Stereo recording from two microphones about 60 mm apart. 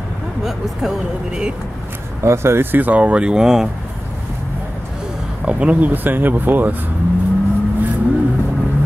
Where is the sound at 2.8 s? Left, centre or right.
Right.